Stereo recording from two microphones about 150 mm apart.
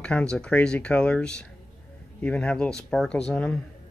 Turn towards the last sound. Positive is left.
turn(degrees=5)  # may be behind; listen again after turning